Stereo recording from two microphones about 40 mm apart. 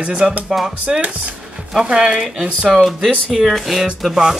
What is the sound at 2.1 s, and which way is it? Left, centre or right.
Speech, centre.